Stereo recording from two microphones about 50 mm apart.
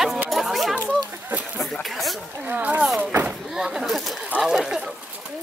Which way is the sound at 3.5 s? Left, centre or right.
Centre.